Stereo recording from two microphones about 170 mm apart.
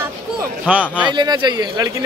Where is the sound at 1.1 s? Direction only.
25° right (ahead or behind).